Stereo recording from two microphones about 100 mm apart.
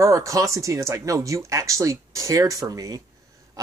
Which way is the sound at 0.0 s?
30° right (ahead or behind).